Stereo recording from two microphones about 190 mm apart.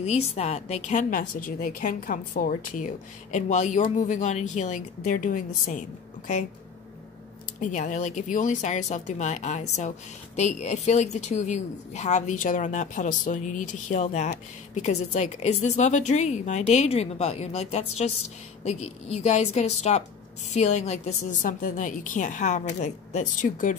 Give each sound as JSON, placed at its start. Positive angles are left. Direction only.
{"t": 0.0, "sound": "speech", "side_deg": 35}
{"t": 7.6, "sound": "speech", "side_deg": 40}